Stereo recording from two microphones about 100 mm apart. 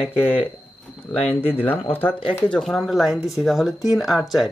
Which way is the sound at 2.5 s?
5° left (ahead or behind).